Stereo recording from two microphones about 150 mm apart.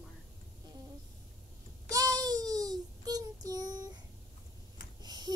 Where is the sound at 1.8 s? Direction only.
25° right (ahead or behind).